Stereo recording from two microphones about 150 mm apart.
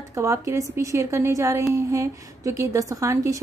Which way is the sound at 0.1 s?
20° right (ahead or behind).